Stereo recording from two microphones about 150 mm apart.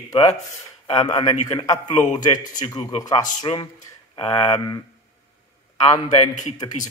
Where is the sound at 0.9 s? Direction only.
30° left (ahead or behind).